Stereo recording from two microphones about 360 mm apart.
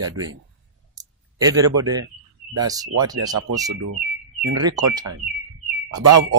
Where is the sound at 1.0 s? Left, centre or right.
Centre.